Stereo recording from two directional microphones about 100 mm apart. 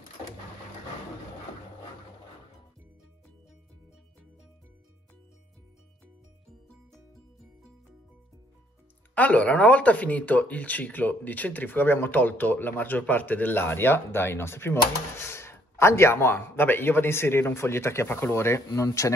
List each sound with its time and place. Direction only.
9.1 s speech: 15° left (ahead or behind); by 19.1 s 30° left (ahead or behind)